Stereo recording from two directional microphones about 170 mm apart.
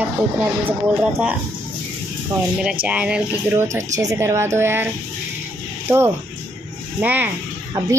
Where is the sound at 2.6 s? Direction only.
10° right (ahead or behind).